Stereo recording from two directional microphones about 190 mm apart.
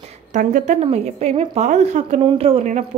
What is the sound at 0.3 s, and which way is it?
A woman's voice, 40° right (ahead or behind).